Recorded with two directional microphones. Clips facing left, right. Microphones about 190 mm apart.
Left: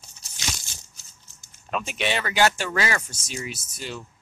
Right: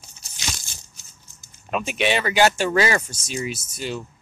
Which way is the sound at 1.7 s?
15° right (ahead or behind).